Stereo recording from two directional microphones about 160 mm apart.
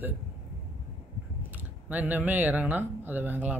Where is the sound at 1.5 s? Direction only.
10° right (ahead or behind).